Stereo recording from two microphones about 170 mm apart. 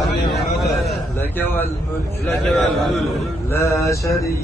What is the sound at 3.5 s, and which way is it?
Speech, 15° left (ahead or behind).